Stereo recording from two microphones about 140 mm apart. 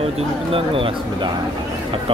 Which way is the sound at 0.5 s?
40° right (ahead or behind).